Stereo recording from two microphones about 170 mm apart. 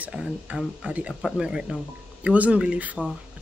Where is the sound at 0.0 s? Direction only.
5° right (ahead or behind).